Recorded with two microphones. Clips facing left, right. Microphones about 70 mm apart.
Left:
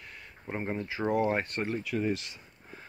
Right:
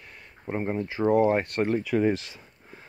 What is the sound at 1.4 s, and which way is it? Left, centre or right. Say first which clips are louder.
Speech: right 7 dB; right.